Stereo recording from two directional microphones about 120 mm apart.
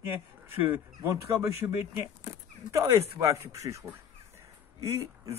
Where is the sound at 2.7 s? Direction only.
25° right (ahead or behind).